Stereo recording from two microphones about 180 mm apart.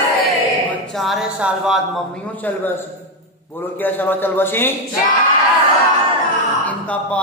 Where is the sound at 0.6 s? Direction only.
Centre (ahead or behind).